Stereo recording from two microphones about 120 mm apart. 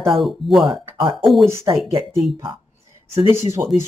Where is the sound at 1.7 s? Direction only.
40° right (ahead or behind).